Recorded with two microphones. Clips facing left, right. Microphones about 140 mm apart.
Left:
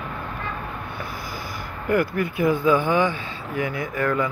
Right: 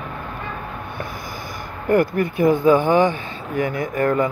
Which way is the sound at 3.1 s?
45° right (ahead or behind).